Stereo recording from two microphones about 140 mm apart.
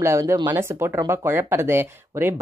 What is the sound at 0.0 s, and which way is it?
Speech, 20° right (ahead or behind).